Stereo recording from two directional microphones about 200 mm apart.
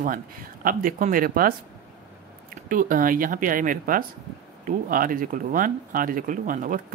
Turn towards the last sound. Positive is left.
turn(degrees=-40)  # may be behind; listen again after turning